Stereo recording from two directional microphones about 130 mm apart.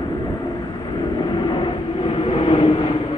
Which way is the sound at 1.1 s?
35° left (ahead or behind).